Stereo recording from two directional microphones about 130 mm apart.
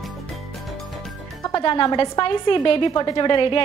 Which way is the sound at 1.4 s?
30° left (ahead or behind).